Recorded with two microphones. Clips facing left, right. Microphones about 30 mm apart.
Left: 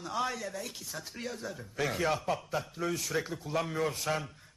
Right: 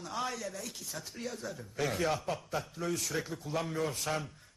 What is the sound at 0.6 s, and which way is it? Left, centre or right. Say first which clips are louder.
Speech: left 2 dB; centre.